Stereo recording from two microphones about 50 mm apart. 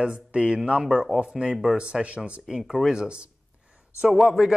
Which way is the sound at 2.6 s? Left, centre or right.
Centre.